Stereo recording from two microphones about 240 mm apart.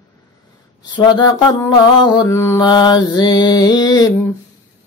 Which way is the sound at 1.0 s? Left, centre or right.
Centre.